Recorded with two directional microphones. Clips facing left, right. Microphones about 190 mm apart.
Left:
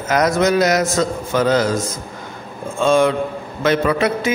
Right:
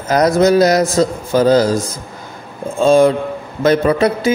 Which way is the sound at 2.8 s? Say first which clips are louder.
Right 4 dB; 35° right (ahead or behind).